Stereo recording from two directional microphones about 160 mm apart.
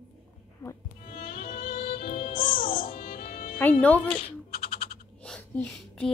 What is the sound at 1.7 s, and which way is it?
Music, 35° left (ahead or behind).